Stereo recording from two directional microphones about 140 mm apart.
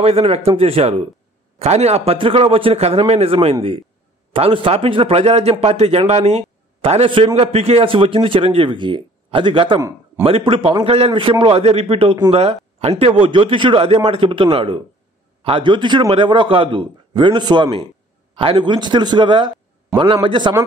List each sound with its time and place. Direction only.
0.0 s a man's voice: 45° right (ahead or behind)
9.8 s a sound: 20° right (ahead or behind)
10.2 s a man's voice: 40° right (ahead or behind)